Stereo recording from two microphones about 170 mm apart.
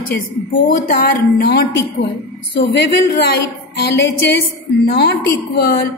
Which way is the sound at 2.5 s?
85° left.